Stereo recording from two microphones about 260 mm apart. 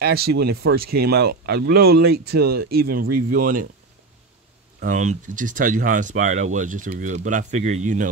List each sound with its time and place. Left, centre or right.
0.0 s speech: right
4.7 s speech: right